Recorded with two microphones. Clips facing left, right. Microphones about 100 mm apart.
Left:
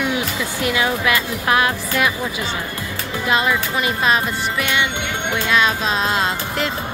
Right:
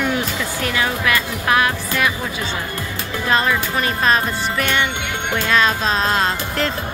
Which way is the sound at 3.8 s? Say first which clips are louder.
Right 1 dB; 15° left (ahead or behind).